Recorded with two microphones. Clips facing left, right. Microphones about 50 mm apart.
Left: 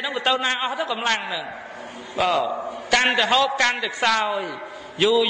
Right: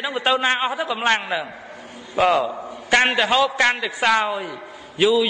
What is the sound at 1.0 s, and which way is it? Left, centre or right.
Speech, right.